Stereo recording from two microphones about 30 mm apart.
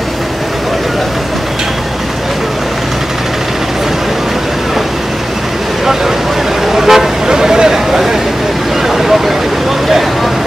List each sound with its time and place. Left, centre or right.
6.7 s vehicle: centre
7.2 s a sound: centre
8.8 s vehicle: centre